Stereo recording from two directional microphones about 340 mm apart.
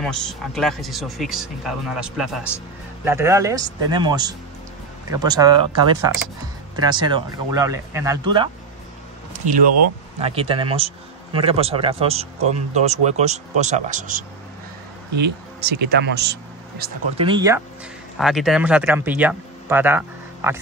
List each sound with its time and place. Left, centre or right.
0.0 s speech: centre
9.3 s a sound: right
10.2 s speech: centre
17.2 s speech: centre
18.1 s speech: centre